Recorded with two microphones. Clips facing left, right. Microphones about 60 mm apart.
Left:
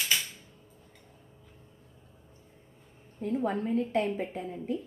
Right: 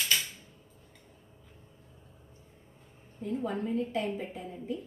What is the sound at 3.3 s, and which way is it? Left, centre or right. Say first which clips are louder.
A woman's voice: left 3 dB; left.